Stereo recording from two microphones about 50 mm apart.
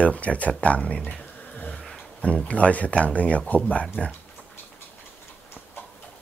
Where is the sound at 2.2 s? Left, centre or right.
Left.